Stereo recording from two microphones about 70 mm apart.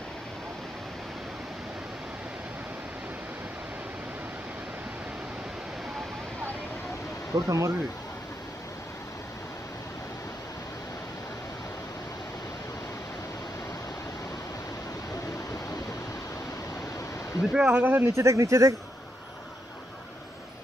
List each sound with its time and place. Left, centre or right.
7.3 s speech: right
17.4 s a sound: centre
17.6 s speech: right
18.1 s speech: right